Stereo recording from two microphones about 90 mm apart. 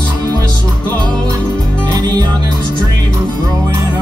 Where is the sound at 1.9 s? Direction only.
55° right (ahead or behind).